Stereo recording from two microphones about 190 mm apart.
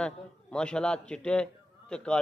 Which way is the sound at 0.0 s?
5° left (ahead or behind).